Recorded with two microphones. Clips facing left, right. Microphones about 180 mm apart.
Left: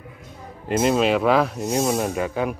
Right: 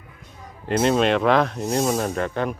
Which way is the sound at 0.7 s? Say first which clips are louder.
Even; 5° left (ahead or behind).